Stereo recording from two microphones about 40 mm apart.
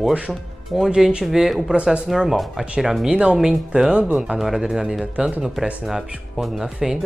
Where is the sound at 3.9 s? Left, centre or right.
Right.